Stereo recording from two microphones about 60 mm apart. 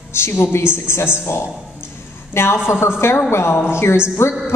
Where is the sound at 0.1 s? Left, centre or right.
Left.